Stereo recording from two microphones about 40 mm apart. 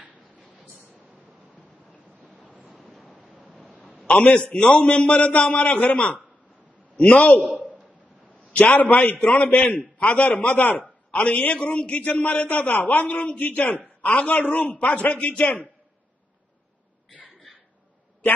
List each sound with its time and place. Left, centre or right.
3.2 s waves: right
4.4 s a man's voice: left
7.0 s a man's voice: left
7.4 s a sound: right
8.7 s a man's voice: left
11.1 s a man's voice: left
11.9 s a man's voice: left